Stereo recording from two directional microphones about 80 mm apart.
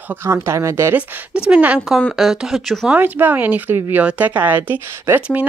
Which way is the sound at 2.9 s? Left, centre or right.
Right.